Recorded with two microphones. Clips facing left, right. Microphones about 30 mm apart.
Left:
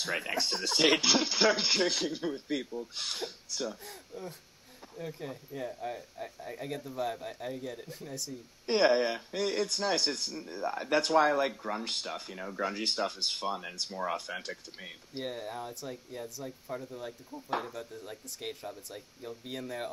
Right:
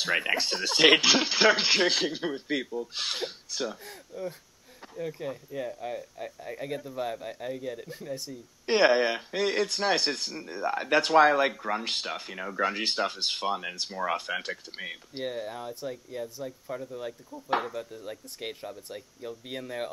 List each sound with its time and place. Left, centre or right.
0.0 s a man's voice: right
3.8 s speech: centre
8.6 s a man's voice: right
15.2 s speech: centre